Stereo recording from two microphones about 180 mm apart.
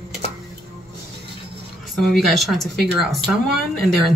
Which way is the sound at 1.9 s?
Centre (ahead or behind).